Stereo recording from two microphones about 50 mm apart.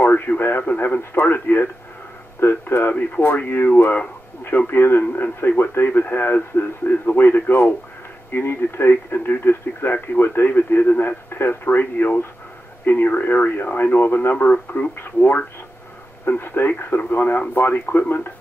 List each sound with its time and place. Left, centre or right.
0.0 s speech: left
16.3 s speech: left